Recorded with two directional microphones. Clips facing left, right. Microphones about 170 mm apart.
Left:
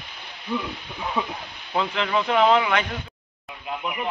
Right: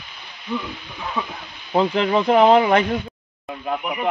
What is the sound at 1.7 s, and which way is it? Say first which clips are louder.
Speech: right 6 dB; 35° right (ahead or behind).